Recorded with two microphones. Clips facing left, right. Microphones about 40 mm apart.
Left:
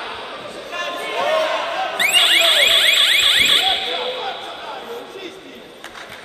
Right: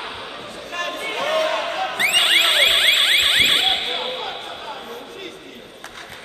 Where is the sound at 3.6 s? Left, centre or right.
Centre.